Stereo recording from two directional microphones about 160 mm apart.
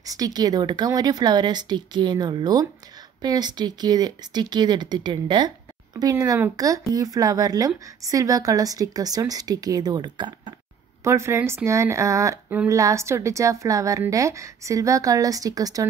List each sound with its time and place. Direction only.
0.0 s speech: 25° right (ahead or behind)
11.1 s speech: 15° right (ahead or behind)